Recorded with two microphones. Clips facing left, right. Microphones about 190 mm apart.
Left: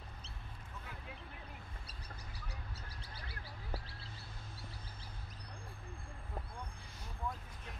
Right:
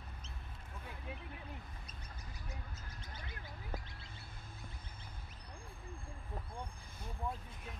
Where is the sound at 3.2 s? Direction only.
35° left (ahead or behind).